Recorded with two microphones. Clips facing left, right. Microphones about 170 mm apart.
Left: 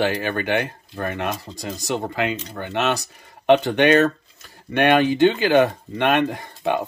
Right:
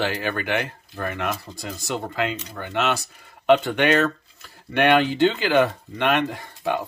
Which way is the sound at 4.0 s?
40° left (ahead or behind).